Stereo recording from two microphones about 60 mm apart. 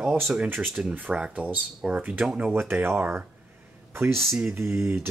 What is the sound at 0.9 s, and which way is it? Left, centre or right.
Speech, right.